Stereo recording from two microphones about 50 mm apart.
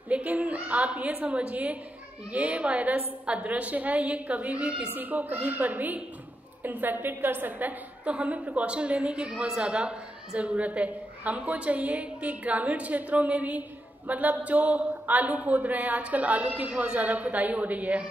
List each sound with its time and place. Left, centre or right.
0.1 s a woman's voice: right